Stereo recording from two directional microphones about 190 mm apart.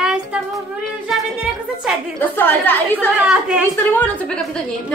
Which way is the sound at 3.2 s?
5° right (ahead or behind).